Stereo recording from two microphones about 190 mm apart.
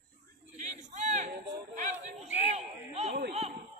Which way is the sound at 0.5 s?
40° right (ahead or behind).